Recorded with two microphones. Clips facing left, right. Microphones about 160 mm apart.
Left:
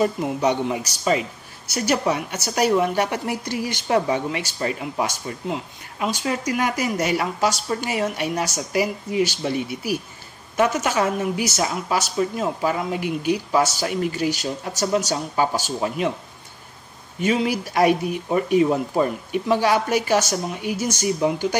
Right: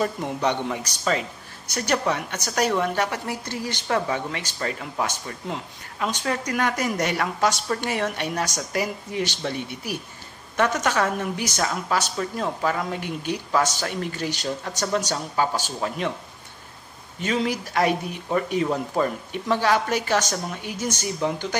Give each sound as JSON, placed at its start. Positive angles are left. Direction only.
{"t": 0.0, "sound": "a woman's voice", "side_deg": 10}
{"t": 10.5, "sound": "a woman's voice", "side_deg": 10}
{"t": 17.2, "sound": "a woman's voice", "side_deg": 10}